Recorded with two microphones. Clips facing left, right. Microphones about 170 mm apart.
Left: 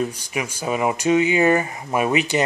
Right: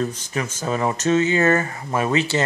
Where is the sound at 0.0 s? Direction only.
10° left (ahead or behind).